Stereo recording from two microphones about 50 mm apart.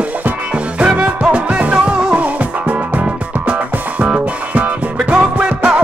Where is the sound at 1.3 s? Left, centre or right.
Right.